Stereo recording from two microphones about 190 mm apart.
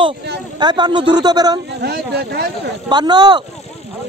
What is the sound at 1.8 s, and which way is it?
Speech, 60° right (ahead or behind).